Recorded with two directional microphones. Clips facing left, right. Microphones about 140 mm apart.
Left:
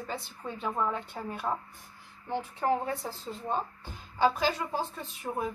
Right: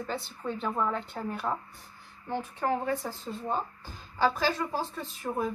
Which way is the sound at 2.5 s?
25° left (ahead or behind).